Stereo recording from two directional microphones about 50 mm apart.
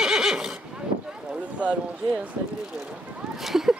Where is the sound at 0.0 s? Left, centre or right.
Centre.